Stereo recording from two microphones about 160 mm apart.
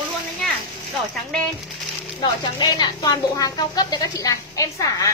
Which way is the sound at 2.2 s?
25° left (ahead or behind).